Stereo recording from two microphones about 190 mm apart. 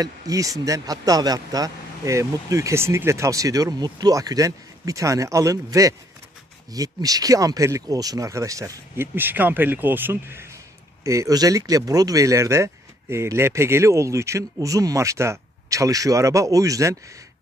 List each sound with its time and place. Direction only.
0.0 s a man's voice: 20° right (ahead or behind)